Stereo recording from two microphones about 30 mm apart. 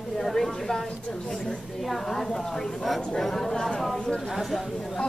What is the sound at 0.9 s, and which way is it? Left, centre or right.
Speech, left.